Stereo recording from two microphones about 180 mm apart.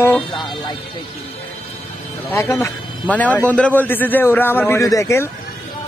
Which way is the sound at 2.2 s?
15° left (ahead or behind).